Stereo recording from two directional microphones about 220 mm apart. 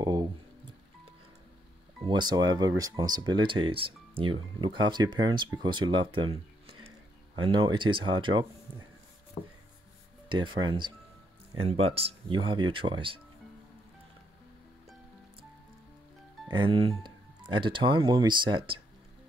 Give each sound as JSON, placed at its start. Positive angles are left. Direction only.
{"t": 0.0, "sound": "music", "side_deg": -15}
{"t": 2.0, "sound": "speech", "side_deg": -20}
{"t": 10.2, "sound": "speech", "side_deg": -20}
{"t": 16.4, "sound": "speech", "side_deg": -20}